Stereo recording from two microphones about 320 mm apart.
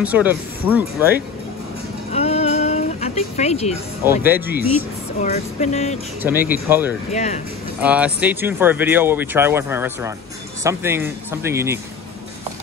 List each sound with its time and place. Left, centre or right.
0.0 s speech: centre
2.1 s a sound: centre
4.0 s speech: centre
5.2 s speech: left
6.2 s speech: centre
7.1 s speech: left
7.8 s speech: centre